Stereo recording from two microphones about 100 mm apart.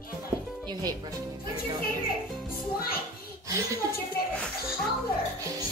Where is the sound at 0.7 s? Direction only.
40° right (ahead or behind).